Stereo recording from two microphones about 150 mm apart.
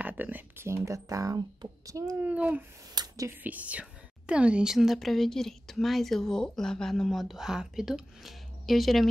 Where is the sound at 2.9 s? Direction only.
25° right (ahead or behind).